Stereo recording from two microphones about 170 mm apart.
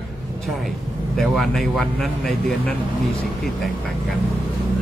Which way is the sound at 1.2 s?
Centre (ahead or behind).